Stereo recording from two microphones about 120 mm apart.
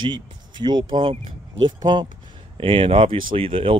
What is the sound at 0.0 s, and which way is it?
Speech, 40° right (ahead or behind).